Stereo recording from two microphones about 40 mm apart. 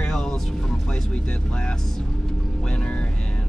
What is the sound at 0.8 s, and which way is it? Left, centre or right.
Speech, left.